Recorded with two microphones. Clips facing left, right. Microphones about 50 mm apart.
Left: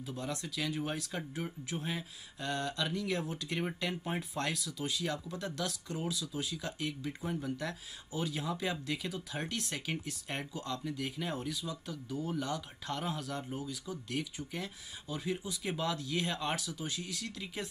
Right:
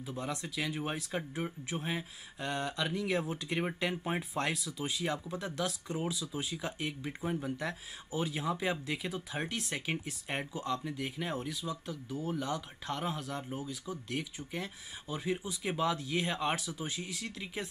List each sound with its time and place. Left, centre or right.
0.0 s speech: centre